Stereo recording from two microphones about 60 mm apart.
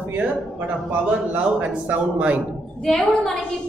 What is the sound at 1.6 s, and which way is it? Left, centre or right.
Speech, right.